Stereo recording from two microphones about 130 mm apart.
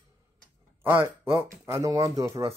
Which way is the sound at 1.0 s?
20° right (ahead or behind).